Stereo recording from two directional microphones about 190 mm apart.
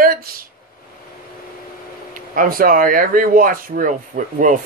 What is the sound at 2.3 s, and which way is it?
Speech, 50° right (ahead or behind).